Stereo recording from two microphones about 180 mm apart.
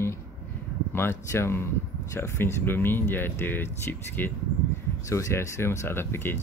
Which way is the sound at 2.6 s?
10° left (ahead or behind).